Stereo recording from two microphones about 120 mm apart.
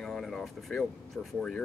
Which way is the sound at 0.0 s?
5° left (ahead or behind).